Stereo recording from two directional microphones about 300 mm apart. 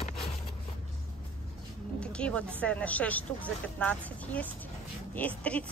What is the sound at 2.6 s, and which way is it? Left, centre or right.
A woman's voice, centre.